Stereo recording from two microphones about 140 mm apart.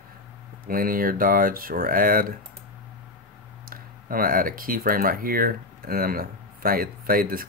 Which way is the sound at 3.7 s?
90° right.